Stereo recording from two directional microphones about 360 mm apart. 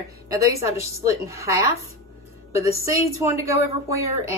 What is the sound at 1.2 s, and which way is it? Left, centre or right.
A woman's voice, centre.